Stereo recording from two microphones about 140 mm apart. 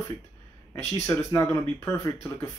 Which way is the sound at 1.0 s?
20° left (ahead or behind).